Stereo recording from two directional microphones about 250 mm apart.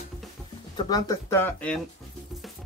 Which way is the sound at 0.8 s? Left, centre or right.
Centre.